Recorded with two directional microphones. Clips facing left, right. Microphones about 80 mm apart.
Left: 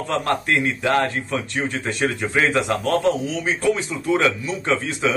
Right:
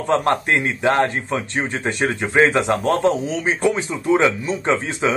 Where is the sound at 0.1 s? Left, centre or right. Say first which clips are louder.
Right 4 dB; right.